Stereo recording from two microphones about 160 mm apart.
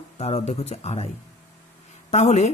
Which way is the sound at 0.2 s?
40° left (ahead or behind).